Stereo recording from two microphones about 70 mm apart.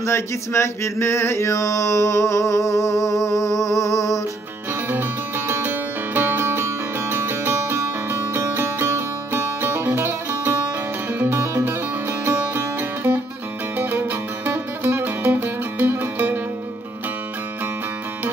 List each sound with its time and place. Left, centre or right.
0.0 s music: left
5.6 s music: right